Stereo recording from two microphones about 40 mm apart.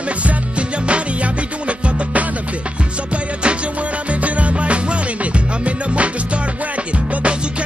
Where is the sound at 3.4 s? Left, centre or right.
Right.